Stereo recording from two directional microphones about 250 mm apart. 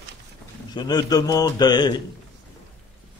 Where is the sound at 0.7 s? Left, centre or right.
Centre.